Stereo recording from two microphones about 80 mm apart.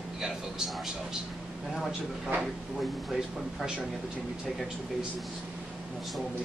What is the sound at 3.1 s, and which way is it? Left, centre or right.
Speech, centre.